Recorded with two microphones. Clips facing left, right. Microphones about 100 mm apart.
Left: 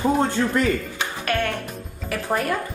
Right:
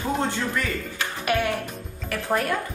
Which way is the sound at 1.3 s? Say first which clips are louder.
Right 1 dB; 10° right (ahead or behind).